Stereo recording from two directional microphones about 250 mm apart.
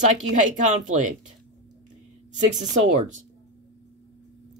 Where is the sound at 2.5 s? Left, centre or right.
Right.